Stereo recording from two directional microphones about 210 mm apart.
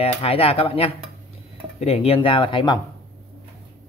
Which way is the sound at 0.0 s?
30° left (ahead or behind).